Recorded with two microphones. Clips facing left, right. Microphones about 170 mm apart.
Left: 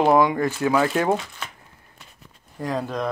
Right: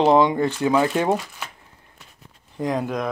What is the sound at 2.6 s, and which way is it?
Speech, 15° right (ahead or behind).